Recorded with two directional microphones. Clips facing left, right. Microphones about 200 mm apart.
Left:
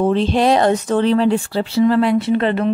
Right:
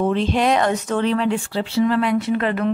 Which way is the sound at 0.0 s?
30° left (ahead or behind).